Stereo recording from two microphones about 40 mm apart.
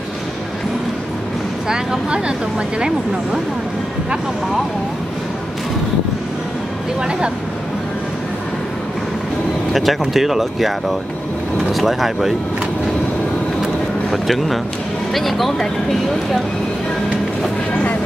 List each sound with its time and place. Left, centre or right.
1.7 s speech: centre
9.7 s speech: centre
14.1 s speech: centre